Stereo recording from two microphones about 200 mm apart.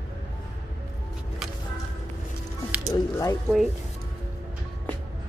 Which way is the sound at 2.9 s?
15° left (ahead or behind).